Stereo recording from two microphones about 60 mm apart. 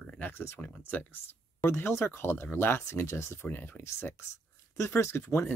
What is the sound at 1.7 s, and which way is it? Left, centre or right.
Speech, left.